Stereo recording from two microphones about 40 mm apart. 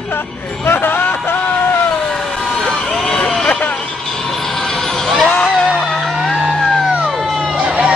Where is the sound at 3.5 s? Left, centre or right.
Left.